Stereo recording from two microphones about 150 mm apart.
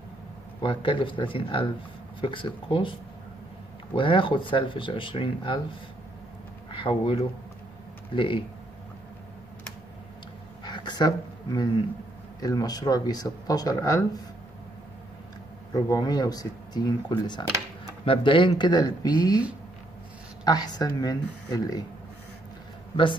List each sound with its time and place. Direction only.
0.6 s speech: 35° left (ahead or behind)
6.7 s speech: 35° left (ahead or behind)
10.6 s a sound: 30° left (ahead or behind)
12.4 s speech: 25° left (ahead or behind)
15.7 s speech: 25° left (ahead or behind)
20.4 s speech: 25° left (ahead or behind)